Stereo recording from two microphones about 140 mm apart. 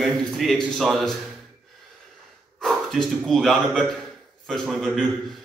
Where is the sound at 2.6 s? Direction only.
Centre (ahead or behind).